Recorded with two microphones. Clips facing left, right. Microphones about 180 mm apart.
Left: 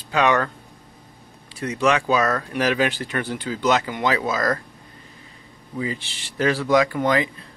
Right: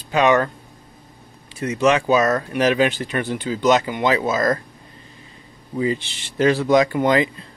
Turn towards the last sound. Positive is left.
turn(degrees=-25)  # may be behind; listen again after turning